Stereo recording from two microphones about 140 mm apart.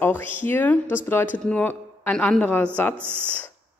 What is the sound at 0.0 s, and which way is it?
Speech, 15° left (ahead or behind).